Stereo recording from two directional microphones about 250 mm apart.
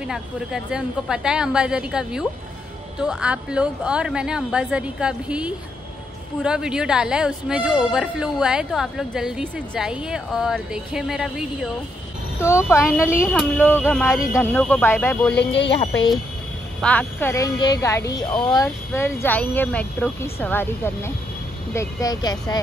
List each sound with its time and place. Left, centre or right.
0.0 s speech: centre
12.4 s speech: centre
15.3 s speech: left
16.8 s speech: centre